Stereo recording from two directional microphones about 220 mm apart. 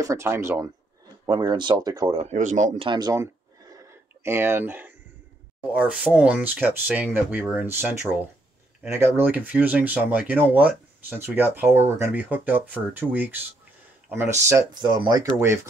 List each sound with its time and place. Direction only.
0.0 s speech: 15° right (ahead or behind)
2.3 s speech: 35° right (ahead or behind); by 3.3 s 15° right (ahead or behind)
3.7 s a sound: 10° right (ahead or behind)
5.7 s speech: 5° right (ahead or behind)